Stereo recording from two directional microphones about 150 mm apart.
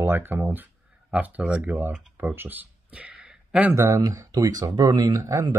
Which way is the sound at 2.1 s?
15° right (ahead or behind).